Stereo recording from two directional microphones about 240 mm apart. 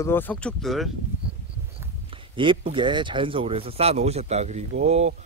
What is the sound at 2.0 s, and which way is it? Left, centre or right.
Speech, right.